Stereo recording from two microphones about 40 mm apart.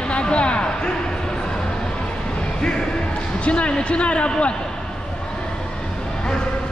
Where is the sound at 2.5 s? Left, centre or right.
Left.